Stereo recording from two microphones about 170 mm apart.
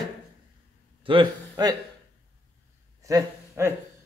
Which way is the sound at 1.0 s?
30° right (ahead or behind).